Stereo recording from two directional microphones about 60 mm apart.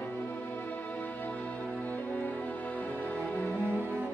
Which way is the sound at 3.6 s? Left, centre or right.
Right.